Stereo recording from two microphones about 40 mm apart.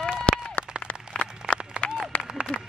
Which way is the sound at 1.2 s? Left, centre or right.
Left.